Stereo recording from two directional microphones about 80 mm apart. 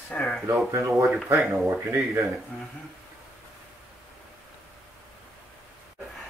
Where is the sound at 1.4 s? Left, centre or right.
Centre.